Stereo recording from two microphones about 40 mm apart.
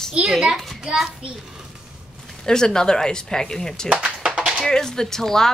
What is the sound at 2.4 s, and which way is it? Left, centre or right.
Speech, centre.